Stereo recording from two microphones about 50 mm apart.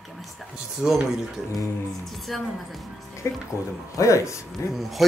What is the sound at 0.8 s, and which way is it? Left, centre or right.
Speech, centre.